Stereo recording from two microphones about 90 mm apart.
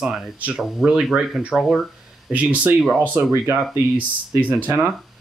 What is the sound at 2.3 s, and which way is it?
Speech, 15° right (ahead or behind).